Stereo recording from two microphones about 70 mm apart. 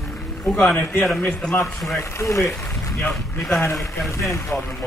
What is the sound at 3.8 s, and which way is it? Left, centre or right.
Speech, left.